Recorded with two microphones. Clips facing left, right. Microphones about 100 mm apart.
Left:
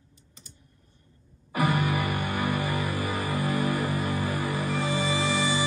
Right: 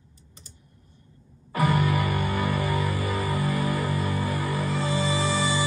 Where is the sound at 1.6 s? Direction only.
15° left (ahead or behind).